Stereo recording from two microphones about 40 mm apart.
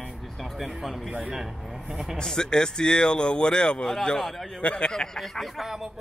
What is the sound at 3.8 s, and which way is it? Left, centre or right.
Speech, centre.